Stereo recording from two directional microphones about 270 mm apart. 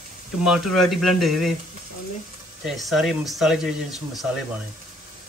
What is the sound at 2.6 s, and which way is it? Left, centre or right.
Speech, centre.